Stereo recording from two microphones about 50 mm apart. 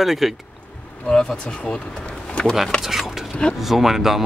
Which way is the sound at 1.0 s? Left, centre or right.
Centre.